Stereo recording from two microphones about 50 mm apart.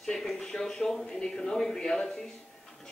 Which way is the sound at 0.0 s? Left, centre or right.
Centre.